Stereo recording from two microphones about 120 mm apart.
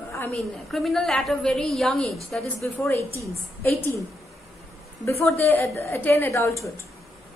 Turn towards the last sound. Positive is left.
turn(degrees=25)  # may be behind; listen again after turning